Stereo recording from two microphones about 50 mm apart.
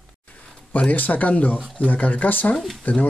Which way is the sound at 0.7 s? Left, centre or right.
Left.